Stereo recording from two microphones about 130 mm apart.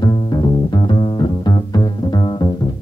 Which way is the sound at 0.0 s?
35° left (ahead or behind).